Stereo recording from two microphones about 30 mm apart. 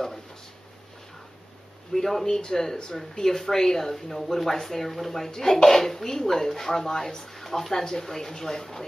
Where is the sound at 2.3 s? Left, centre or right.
Centre.